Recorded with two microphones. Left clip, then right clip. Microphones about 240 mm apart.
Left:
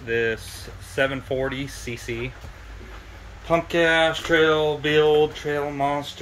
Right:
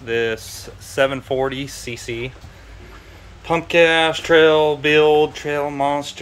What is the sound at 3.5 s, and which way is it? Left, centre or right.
Speech, centre.